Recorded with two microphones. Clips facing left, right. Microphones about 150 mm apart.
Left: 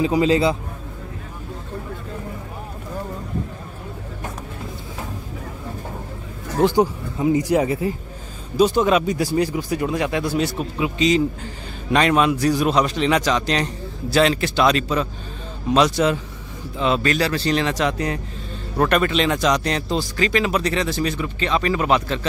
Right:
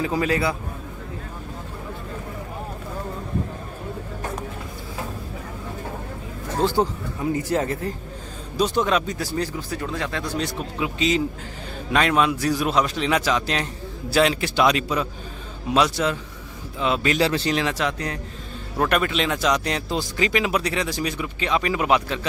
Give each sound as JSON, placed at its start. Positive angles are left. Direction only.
{"t": 0.0, "sound": "a man's voice", "side_deg": 20}
{"t": 6.6, "sound": "a man's voice", "side_deg": 15}
{"t": 17.0, "sound": "speech", "side_deg": -20}
{"t": 17.5, "sound": "a man's voice", "side_deg": -5}
{"t": 17.9, "sound": "speech", "side_deg": 5}
{"t": 18.8, "sound": "a man's voice", "side_deg": -5}